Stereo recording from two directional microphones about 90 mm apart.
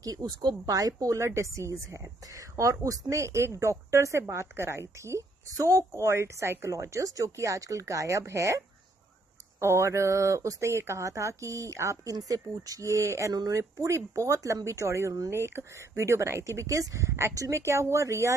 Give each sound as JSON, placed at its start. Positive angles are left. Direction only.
{"t": 0.0, "sound": "speech", "side_deg": -45}